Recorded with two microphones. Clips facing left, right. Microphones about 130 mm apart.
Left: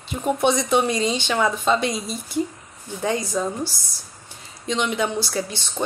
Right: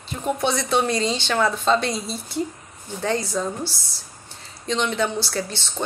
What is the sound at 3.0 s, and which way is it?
Speech, 15° left (ahead or behind).